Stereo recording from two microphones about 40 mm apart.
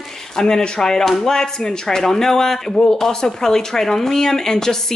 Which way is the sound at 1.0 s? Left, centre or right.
Centre.